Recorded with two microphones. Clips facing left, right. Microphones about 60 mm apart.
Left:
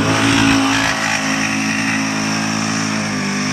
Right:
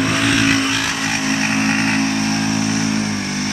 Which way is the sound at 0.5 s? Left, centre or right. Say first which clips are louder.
Left 4 dB; left.